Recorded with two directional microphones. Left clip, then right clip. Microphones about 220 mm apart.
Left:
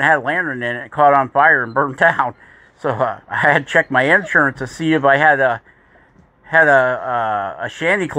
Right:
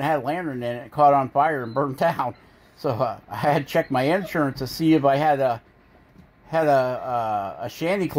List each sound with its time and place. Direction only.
0.0 s speech: 20° left (ahead or behind)